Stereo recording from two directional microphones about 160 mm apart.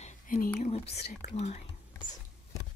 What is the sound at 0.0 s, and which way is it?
Whispering, 50° left (ahead or behind).